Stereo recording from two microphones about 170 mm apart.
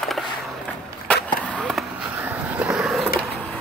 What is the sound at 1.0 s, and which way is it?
Skateboard, 5° left (ahead or behind).